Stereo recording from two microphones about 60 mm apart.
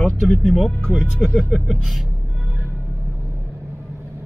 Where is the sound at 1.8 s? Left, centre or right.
Centre.